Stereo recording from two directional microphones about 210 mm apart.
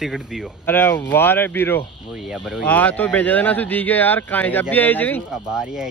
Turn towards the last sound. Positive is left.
turn(degrees=0)  # may be behind; listen again after turning